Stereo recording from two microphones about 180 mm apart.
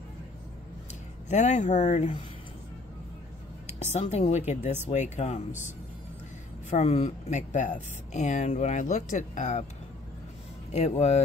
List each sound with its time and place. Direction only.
1.3 s speech: 40° left (ahead or behind)
3.6 s a woman's voice: 35° left (ahead or behind)
6.7 s speech: 35° left (ahead or behind)
10.7 s speech: 35° left (ahead or behind)